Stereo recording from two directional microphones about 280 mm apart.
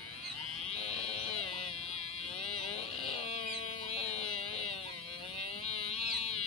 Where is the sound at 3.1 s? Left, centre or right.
Left.